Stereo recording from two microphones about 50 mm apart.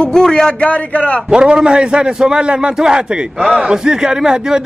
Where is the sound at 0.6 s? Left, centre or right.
Left.